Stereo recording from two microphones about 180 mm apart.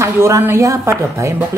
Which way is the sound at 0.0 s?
15° right (ahead or behind).